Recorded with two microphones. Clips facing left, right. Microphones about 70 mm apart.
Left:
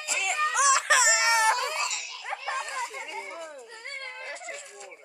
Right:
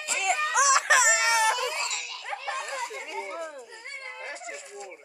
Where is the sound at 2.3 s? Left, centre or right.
Centre.